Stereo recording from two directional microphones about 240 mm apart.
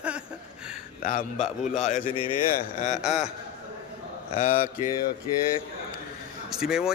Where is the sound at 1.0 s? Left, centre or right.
Left.